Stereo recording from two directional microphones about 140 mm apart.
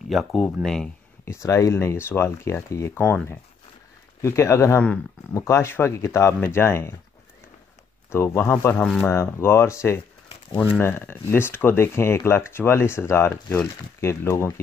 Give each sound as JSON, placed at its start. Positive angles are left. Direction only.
{"t": 0.1, "sound": "speech", "side_deg": 0}
{"t": 1.2, "sound": "speech", "side_deg": 20}
{"t": 8.1, "sound": "speech", "side_deg": 20}